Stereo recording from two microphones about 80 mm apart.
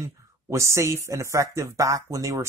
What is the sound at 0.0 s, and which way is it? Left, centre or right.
Speech, right.